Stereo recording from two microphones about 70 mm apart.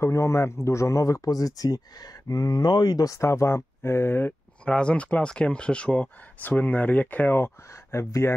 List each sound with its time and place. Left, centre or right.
0.0 s speech: left
3.1 s speech: left
4.6 s speech: centre; by 7.5 s left
7.7 s speech: left